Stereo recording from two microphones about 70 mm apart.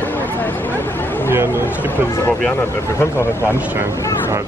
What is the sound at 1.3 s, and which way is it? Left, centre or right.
Speech, right.